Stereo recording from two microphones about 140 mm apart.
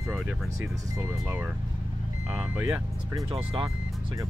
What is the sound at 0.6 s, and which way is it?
Speech, 15° right (ahead or behind).